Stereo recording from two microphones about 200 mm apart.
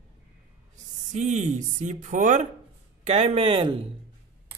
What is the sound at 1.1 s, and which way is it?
A man's voice, 35° right (ahead or behind).